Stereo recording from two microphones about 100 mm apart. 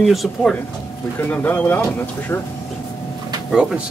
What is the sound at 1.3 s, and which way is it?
Speech, 15° left (ahead or behind).